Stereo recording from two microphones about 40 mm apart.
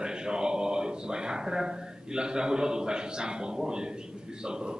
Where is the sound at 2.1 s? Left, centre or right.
Centre.